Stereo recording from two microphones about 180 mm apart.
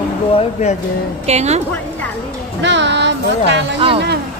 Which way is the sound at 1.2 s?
35° right (ahead or behind).